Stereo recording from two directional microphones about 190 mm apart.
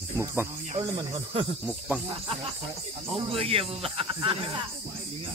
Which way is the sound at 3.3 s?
30° right (ahead or behind).